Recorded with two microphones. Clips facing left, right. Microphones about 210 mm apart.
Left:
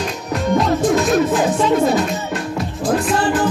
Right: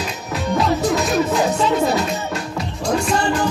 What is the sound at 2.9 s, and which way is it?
Music, 5° left (ahead or behind).